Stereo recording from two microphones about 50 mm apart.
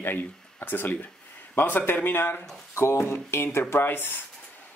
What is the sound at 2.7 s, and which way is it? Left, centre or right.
Speech, left.